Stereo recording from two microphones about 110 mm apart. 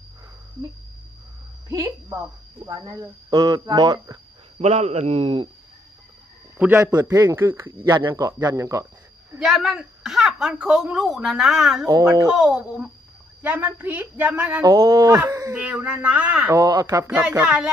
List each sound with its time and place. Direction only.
1.7 s a woman's voice: 25° right (ahead or behind)
4.6 s a man's voice: 75° right (ahead or behind)
5.2 s speech: 50° right (ahead or behind)
6.6 s a woman's voice: 20° right (ahead or behind)
6.9 s speech: 35° right (ahead or behind)
7.8 s speech: 40° right (ahead or behind)
9.4 s a woman's voice: centre (ahead or behind)
11.8 s speech: 30° right (ahead or behind)
12.3 s a woman's voice: 10° right (ahead or behind)
14.6 s speech: 30° right (ahead or behind)
15.5 s a woman's voice: 15° right (ahead or behind)
16.5 s speech: 35° right (ahead or behind)
17.1 s a woman's voice: 10° right (ahead or behind)